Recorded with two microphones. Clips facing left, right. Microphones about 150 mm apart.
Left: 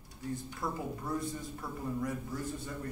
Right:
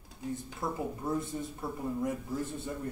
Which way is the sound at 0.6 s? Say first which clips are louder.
Right 4 dB; 25° right (ahead or behind).